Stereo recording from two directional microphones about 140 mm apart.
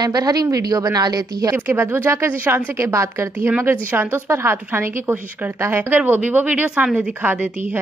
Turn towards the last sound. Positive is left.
turn(degrees=-10)  # may be behind; listen again after turning